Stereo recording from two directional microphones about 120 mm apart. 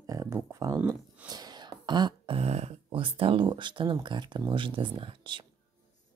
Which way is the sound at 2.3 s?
60° right (ahead or behind).